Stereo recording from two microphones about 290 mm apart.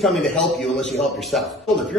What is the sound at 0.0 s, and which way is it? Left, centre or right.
A man's voice, centre.